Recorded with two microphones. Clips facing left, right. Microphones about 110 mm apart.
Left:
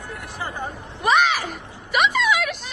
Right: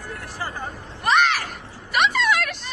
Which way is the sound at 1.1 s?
5° left (ahead or behind).